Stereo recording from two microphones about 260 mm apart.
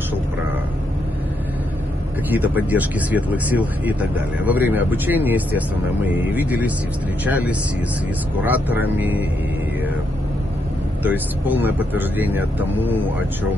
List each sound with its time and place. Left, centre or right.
2.3 s speech: centre
11.1 s speech: centre